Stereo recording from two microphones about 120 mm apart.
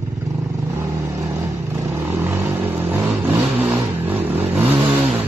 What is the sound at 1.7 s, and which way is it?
Vehicle, 15° right (ahead or behind).